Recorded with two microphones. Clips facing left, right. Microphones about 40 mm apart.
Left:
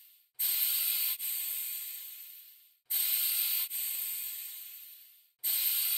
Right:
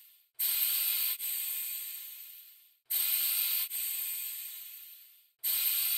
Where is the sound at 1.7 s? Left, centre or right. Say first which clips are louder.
Right 1 dB; centre.